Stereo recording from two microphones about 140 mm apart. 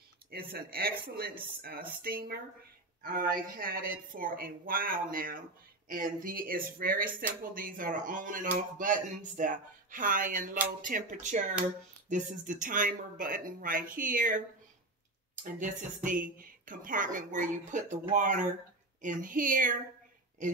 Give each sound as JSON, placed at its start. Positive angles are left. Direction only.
{"t": 0.4, "sound": "a woman's voice", "side_deg": -90}
{"t": 15.4, "sound": "speech", "side_deg": -70}